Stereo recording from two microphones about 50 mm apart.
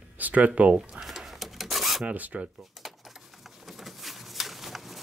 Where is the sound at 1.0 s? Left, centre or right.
Centre.